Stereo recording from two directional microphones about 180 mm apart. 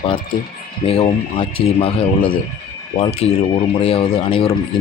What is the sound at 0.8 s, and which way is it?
A man's voice, 30° left (ahead or behind).